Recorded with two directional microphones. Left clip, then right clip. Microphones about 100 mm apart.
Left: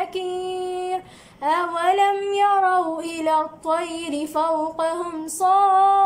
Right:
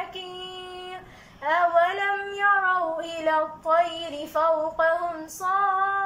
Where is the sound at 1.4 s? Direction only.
35° left (ahead or behind).